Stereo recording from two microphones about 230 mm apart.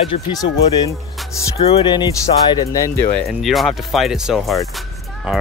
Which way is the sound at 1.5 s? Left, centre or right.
Left.